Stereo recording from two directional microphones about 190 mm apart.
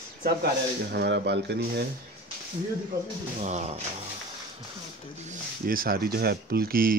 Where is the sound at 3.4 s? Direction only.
35° right (ahead or behind).